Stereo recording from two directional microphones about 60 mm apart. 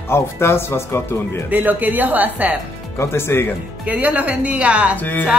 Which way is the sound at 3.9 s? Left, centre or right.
Right.